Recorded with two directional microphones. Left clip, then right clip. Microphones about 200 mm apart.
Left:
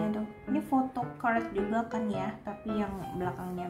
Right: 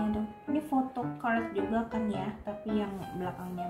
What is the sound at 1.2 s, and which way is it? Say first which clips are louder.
Speech: left 2 dB; 20° left (ahead or behind).